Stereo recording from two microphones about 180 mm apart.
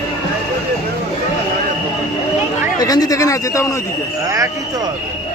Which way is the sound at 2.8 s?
20° left (ahead or behind).